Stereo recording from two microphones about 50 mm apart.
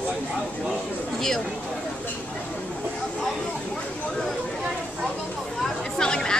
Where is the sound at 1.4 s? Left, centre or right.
Centre.